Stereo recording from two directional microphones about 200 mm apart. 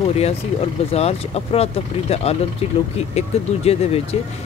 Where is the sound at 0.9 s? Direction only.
30° left (ahead or behind).